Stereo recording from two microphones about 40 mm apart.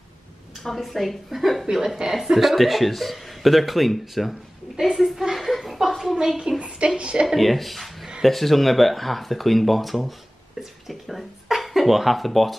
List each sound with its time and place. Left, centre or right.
0.7 s speech: centre
2.0 s speech: centre
6.5 s speech: right
7.3 s speech: centre